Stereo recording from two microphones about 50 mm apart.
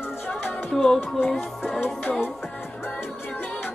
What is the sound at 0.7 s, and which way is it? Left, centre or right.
Music, centre.